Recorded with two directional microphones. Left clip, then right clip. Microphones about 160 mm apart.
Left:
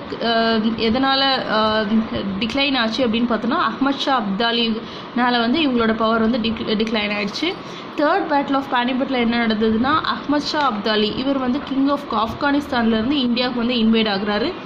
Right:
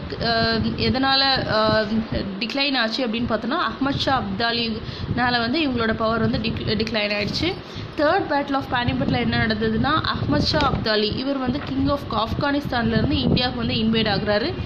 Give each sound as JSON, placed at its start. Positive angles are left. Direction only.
{"t": 0.2, "sound": "a woman's voice", "side_deg": -10}